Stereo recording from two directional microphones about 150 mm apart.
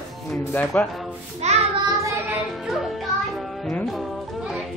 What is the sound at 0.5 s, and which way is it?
Speech, 10° left (ahead or behind).